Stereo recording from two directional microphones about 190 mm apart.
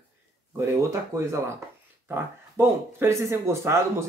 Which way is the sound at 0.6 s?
15° right (ahead or behind).